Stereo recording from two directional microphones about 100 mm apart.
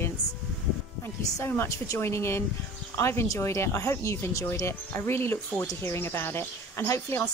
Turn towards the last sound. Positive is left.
turn(degrees=25)  # may be behind; listen again after turning